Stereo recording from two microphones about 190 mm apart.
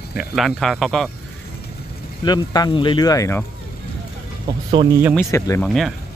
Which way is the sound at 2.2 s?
20° left (ahead or behind).